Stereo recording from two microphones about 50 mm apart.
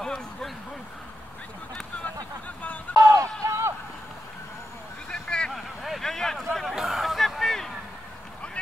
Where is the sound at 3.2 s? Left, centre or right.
Right.